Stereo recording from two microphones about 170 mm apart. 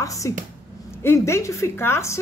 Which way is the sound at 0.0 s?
20° left (ahead or behind).